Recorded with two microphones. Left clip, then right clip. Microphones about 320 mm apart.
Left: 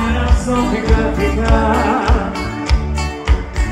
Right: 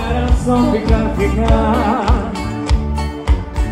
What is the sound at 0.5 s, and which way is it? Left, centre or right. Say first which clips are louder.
Music: right 1 dB; right.